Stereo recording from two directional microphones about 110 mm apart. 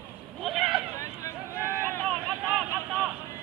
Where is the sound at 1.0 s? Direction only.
25° left (ahead or behind).